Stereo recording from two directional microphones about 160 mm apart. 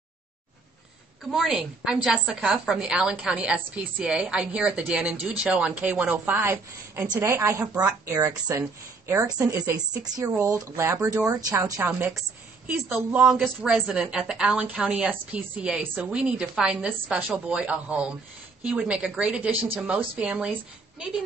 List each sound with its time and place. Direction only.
1.3 s a woman's voice: centre (ahead or behind)
9.5 s a woman's voice: 25° right (ahead or behind); by 20.5 s 5° right (ahead or behind)